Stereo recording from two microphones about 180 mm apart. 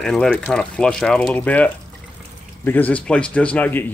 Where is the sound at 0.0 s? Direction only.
5° left (ahead or behind).